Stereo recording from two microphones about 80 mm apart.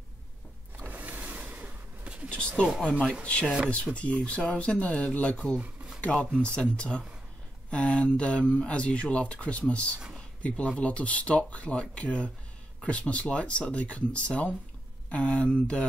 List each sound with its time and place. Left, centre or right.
0.8 s vehicle: centre
2.2 s a sound: centre
3.3 s speech: centre
6.1 s speech: centre
6.4 s speech: centre